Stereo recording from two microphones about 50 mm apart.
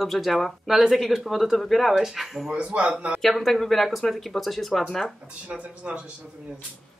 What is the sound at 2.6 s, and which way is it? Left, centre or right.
Speech, right.